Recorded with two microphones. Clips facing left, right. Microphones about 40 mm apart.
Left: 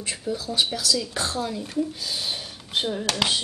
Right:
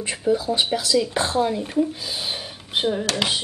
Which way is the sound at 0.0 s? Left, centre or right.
Right.